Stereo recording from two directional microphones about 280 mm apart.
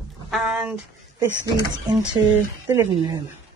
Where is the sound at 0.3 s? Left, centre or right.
Centre.